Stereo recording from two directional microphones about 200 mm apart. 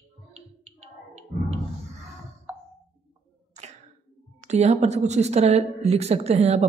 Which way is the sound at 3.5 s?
35° right (ahead or behind).